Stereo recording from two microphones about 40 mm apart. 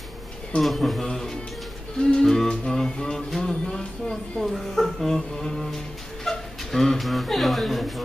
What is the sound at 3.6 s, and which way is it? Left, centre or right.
Music, centre.